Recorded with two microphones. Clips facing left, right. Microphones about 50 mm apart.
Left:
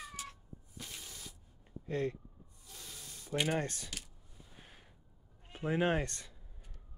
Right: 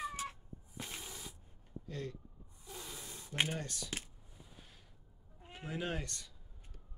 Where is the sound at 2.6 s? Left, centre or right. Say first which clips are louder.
Right 4 dB; centre.